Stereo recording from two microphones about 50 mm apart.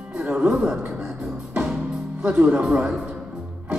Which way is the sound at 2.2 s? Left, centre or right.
Right.